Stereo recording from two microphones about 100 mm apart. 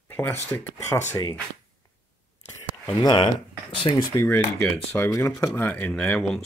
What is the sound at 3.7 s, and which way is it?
Speech, 60° left (ahead or behind).